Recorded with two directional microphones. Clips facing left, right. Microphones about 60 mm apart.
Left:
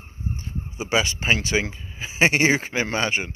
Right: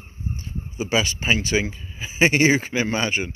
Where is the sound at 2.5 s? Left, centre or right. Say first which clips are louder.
Right 2 dB; left.